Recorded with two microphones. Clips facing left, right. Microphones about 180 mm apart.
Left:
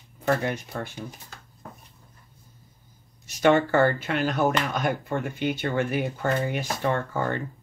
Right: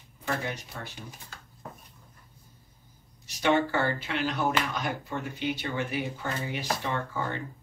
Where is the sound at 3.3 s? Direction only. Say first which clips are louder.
Left 5 dB; 50° left (ahead or behind).